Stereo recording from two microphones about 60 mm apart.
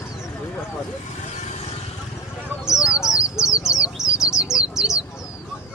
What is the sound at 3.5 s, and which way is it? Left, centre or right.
Bird, centre.